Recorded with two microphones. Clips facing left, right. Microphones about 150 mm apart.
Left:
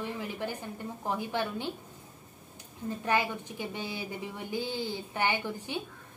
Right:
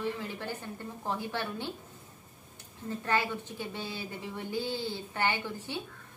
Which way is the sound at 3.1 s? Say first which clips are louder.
Left 1 dB; 15° left (ahead or behind).